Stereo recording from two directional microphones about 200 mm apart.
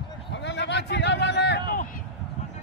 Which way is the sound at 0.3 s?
60° left (ahead or behind).